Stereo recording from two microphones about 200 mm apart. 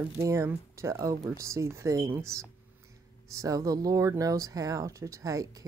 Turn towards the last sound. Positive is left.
turn(degrees=-15)  # may be behind; listen again after turning